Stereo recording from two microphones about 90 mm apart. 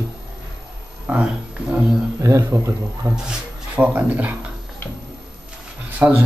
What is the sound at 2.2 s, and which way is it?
Speech, 35° right (ahead or behind).